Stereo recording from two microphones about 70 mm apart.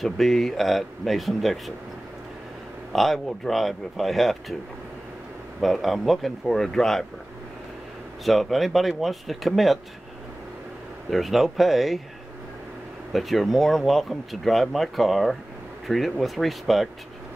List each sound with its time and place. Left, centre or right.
0.0 s speech: centre
2.9 s speech: centre
5.6 s speech: centre
8.3 s speech: centre
11.1 s speech: centre
13.1 s speech: centre